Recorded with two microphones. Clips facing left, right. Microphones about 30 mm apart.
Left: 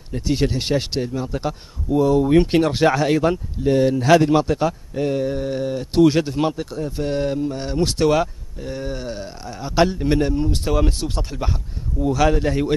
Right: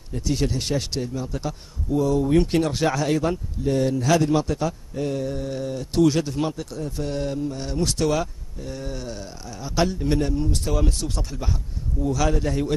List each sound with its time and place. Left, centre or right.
0.1 s speech: left